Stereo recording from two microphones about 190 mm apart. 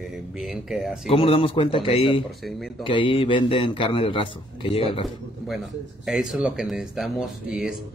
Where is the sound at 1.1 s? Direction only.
30° left (ahead or behind).